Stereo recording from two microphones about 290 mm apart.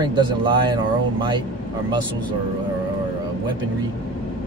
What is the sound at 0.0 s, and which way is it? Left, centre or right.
Speech, centre.